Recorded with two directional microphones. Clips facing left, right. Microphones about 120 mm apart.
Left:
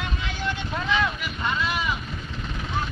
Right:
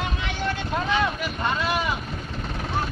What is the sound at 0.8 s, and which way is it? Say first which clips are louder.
Boat: right 1 dB; 40° right (ahead or behind).